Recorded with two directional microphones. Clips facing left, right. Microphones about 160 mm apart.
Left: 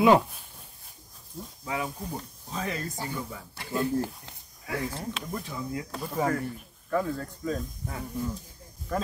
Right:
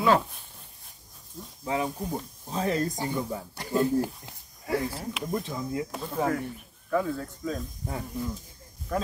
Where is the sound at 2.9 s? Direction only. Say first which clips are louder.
Right 4 dB; 15° right (ahead or behind).